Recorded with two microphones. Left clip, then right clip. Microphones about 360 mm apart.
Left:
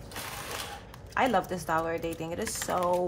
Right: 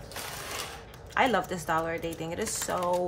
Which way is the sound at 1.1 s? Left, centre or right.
Centre.